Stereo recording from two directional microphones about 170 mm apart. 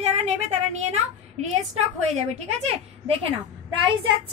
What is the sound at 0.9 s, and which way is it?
A woman's voice, 40° right (ahead or behind).